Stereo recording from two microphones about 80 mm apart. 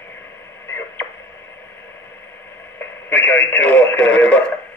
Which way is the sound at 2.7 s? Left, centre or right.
Left.